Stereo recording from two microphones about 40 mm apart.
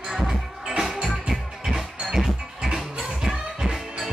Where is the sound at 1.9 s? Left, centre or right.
Centre.